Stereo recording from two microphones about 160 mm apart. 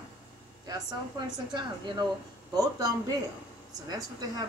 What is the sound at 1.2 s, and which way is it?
Speech, 25° right (ahead or behind).